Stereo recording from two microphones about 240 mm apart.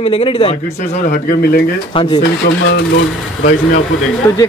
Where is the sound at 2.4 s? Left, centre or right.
Left.